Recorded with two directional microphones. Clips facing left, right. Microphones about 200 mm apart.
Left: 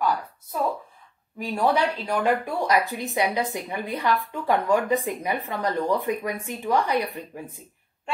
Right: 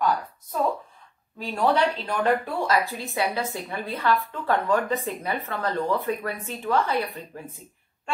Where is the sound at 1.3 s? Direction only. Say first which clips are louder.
Even; 10° left (ahead or behind).